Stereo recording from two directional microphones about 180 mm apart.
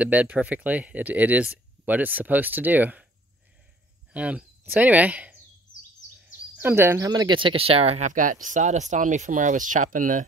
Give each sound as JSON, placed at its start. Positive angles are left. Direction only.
{"t": 0.0, "sound": "speech", "side_deg": -5}
{"t": 4.1, "sound": "speech", "side_deg": -5}
{"t": 6.6, "sound": "speech", "side_deg": -15}